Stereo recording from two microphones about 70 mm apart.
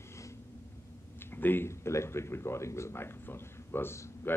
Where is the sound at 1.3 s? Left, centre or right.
Left.